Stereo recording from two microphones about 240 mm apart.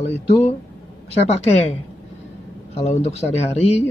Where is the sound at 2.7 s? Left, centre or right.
Left.